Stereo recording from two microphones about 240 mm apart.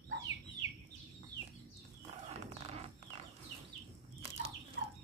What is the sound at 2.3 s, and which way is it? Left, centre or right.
Music, right.